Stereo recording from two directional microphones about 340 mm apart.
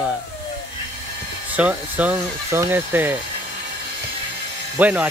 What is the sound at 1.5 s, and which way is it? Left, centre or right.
Speech, centre.